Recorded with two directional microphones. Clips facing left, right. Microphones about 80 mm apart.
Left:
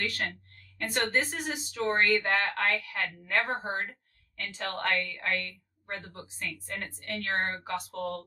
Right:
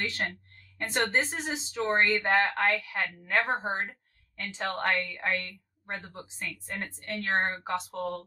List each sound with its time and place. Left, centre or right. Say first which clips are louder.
0.7 s a woman's voice: right 1 dB; right